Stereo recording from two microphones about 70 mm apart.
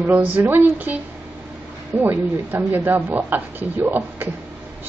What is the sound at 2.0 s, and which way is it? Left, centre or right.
Speech, right.